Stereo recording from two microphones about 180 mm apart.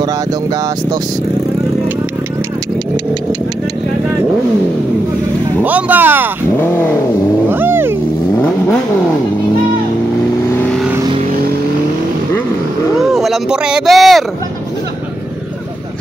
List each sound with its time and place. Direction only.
0.0 s speech: 20° right (ahead or behind)
5.6 s speech: 10° right (ahead or behind)
6.5 s cat: 10° left (ahead or behind)
7.4 s cat: 10° right (ahead or behind)
10.5 s vehicle: 10° left (ahead or behind)
13.0 s a sound: centre (ahead or behind)